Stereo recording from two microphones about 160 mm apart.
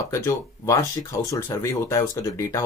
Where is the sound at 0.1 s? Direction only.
20° left (ahead or behind).